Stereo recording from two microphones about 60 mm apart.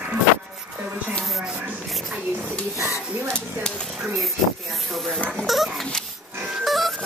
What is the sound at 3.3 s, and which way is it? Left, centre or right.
Speech, centre.